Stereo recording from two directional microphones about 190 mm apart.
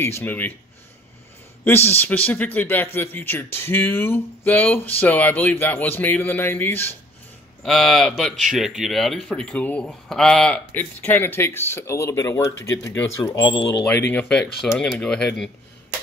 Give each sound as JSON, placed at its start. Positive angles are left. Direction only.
{"t": 0.0, "sound": "a man's voice", "side_deg": 10}
{"t": 1.6, "sound": "a man's voice", "side_deg": 10}
{"t": 7.6, "sound": "speech", "side_deg": 0}
{"t": 14.0, "sound": "a man's voice", "side_deg": 10}